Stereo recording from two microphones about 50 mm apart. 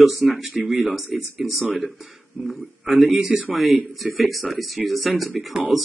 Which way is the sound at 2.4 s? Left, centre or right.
Centre.